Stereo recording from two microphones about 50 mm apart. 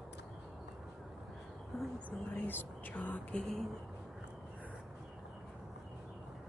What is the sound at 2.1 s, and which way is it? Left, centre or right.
Speech, left.